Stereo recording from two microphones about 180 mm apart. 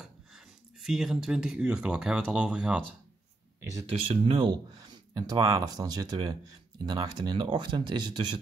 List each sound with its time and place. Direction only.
0.0 s speech: 5° right (ahead or behind)
3.8 s speech: 30° right (ahead or behind)